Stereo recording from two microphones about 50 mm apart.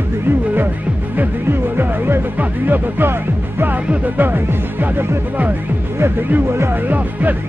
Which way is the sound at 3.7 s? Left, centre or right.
Right.